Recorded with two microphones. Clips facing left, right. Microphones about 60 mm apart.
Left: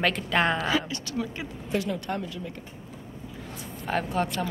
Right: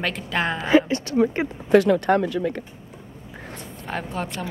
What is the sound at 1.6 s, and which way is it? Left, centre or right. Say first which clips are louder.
Speech: right 13 dB; right.